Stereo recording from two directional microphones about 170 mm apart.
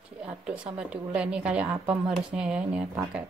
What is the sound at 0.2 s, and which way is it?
Speech, 5° right (ahead or behind).